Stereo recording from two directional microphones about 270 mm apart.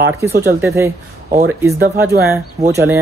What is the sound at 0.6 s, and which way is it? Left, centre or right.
Speech, centre.